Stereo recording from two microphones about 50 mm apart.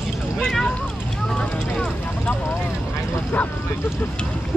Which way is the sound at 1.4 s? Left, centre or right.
Centre.